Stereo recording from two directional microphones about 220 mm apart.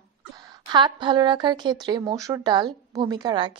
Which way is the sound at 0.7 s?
20° right (ahead or behind).